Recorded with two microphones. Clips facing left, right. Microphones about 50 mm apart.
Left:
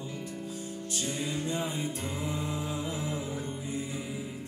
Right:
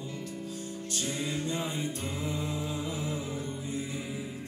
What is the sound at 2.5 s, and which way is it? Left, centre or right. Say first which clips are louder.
Music: even; left.